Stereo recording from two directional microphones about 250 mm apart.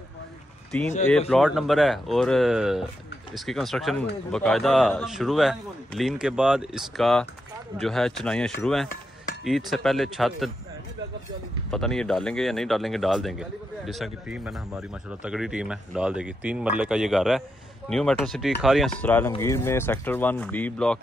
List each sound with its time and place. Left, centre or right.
0.7 s speech: centre
11.7 s speech: centre